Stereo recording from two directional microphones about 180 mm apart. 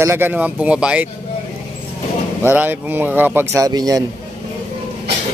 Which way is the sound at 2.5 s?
10° right (ahead or behind).